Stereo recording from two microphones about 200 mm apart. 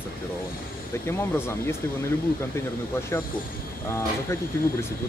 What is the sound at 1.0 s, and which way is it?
Speech, 10° left (ahead or behind).